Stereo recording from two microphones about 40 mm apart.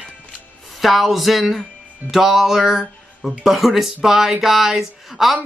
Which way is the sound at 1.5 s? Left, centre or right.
Centre.